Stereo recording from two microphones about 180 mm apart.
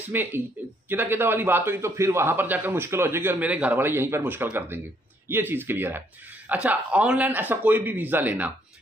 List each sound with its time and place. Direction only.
0.0 s a man's voice: 10° right (ahead or behind)